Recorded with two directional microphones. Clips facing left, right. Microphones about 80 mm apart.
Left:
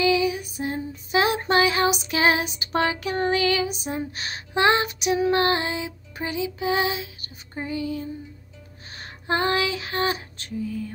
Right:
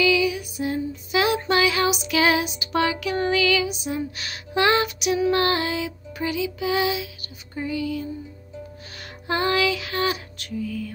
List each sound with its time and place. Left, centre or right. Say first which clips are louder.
0.0 s female singing: right 1 dB; left
9.3 s female singing: right 1 dB; left